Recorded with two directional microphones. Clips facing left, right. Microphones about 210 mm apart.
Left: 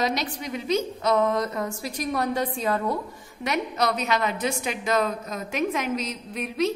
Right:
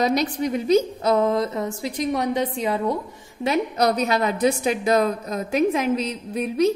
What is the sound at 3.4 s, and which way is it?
A woman's voice, 35° right (ahead or behind).